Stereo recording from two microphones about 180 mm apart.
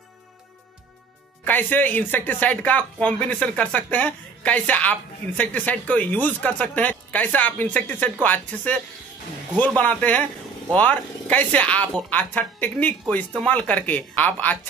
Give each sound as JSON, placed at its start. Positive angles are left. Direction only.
{"t": 1.4, "sound": "speech", "side_deg": 10}